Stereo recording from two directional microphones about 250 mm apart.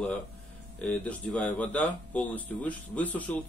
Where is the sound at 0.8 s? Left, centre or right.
Centre.